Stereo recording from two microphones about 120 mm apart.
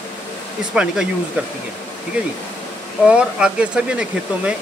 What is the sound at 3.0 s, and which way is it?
Speech, 10° right (ahead or behind).